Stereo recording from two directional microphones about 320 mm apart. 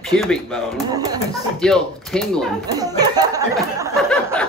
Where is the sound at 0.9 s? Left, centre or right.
Centre.